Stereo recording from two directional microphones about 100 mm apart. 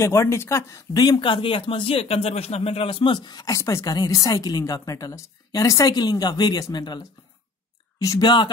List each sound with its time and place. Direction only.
0.0 s speech: 30° left (ahead or behind); by 7.0 s 45° left (ahead or behind)
8.0 s speech: 40° left (ahead or behind)